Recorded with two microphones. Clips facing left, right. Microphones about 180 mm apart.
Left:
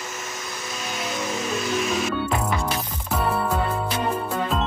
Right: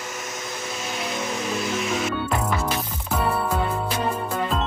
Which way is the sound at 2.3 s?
Centre (ahead or behind).